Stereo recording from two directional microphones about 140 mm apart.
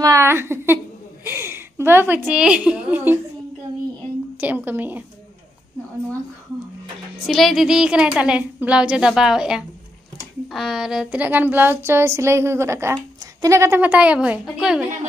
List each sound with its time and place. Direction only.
0.0 s a woman's voice: 20° right (ahead or behind)
4.4 s speech: 10° right (ahead or behind)
7.2 s a woman's voice: centre (ahead or behind)